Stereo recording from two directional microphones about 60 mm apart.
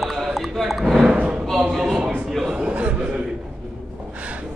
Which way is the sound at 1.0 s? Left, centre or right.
Centre.